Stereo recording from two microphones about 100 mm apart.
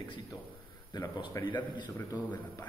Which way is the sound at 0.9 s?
45° left (ahead or behind).